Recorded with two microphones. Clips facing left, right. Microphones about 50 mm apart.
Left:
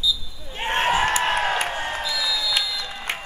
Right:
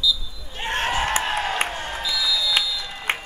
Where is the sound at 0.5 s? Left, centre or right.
Left.